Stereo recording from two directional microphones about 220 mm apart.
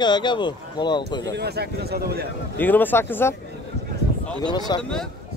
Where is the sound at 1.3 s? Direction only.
45° right (ahead or behind).